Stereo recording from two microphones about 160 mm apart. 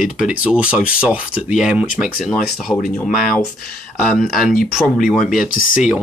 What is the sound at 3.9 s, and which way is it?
Speech, centre (ahead or behind).